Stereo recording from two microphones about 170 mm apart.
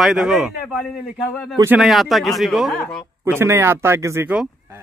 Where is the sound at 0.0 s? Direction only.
Centre (ahead or behind).